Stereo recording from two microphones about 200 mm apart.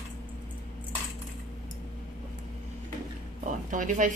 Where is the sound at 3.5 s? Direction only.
40° right (ahead or behind).